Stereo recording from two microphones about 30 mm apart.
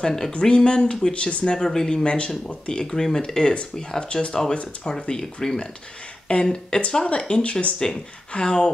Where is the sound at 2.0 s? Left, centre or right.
Left.